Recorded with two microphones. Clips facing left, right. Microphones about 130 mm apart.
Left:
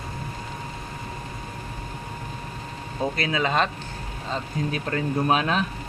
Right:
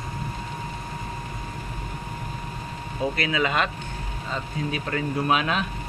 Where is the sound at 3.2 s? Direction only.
30° left (ahead or behind).